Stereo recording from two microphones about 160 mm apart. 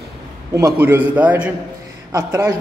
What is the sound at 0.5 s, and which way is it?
A man's voice, 20° right (ahead or behind).